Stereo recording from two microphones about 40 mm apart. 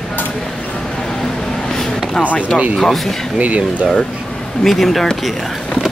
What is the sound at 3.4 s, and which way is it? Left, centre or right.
Speech, right.